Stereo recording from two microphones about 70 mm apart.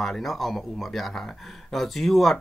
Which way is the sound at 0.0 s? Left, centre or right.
Centre.